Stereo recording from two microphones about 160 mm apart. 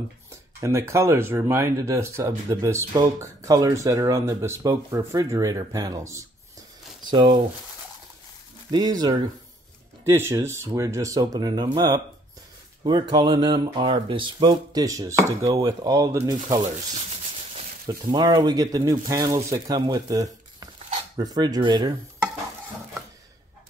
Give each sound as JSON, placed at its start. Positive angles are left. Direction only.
{"t": 0.3, "sound": "speech", "side_deg": -20}
{"t": 8.7, "sound": "speech", "side_deg": -25}
{"t": 16.5, "sound": "speech", "side_deg": -45}